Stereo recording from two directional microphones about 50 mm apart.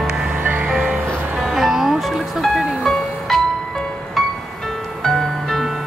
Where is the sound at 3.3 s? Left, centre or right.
Centre.